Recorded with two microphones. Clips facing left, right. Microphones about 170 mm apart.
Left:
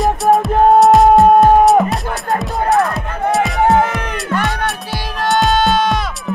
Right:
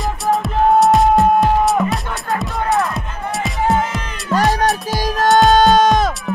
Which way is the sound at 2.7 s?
Centre (ahead or behind).